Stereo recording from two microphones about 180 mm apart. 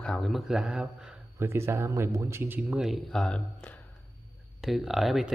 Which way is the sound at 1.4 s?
15° right (ahead or behind).